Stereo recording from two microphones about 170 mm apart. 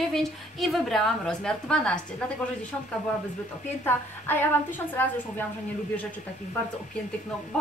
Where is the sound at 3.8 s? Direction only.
10° left (ahead or behind).